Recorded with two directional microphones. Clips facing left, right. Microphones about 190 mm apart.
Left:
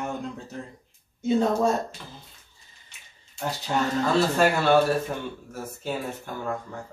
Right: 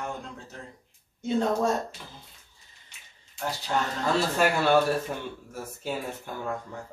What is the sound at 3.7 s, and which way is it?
Speech, 15° left (ahead or behind).